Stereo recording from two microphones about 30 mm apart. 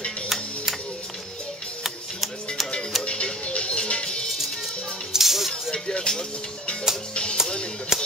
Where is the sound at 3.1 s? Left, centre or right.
Left.